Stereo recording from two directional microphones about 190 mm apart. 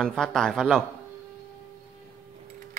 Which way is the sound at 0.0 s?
5° left (ahead or behind).